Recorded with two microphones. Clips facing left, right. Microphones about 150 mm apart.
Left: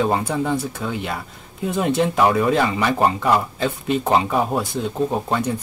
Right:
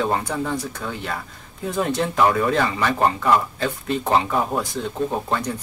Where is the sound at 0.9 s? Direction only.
10° left (ahead or behind).